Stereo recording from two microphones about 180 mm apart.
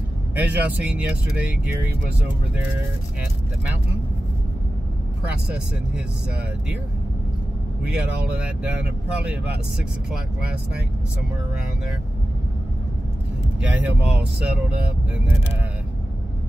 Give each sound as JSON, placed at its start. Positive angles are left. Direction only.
{"t": 0.4, "sound": "speech", "side_deg": -10}
{"t": 7.8, "sound": "speech", "side_deg": -5}
{"t": 13.6, "sound": "speech", "side_deg": -5}